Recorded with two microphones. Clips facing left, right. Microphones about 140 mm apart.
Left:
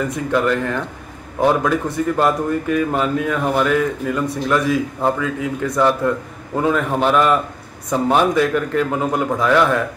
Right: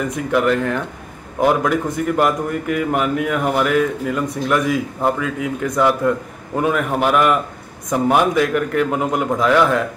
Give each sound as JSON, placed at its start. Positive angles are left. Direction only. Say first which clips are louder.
{"t": 0.3, "sound": "speech", "louder": "right 2 dB", "side_deg": -15}